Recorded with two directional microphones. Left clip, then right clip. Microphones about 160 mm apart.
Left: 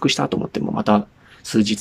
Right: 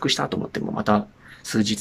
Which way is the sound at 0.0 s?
10° left (ahead or behind).